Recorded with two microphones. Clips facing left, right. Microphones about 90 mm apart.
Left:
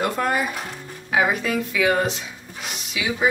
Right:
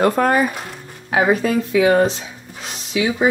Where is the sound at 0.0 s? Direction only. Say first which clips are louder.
Right 7 dB; 40° right (ahead or behind).